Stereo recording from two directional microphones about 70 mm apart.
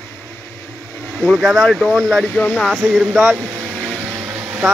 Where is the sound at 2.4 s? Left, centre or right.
Left.